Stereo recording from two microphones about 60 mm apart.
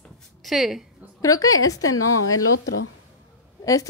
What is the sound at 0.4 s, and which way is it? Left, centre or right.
Speech, centre.